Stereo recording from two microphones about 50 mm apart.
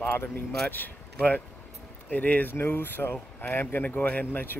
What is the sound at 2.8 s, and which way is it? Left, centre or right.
Speech, left.